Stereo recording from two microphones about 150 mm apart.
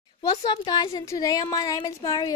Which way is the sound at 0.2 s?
25° left (ahead or behind).